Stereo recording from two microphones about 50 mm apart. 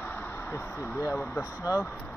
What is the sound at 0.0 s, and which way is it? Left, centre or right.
Vehicle, left.